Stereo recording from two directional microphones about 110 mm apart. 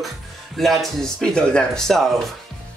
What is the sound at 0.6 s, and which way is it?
Speech, centre (ahead or behind).